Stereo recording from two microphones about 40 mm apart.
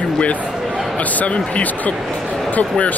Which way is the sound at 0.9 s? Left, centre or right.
Left.